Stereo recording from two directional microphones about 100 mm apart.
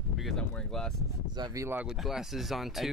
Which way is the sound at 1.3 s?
45° right (ahead or behind).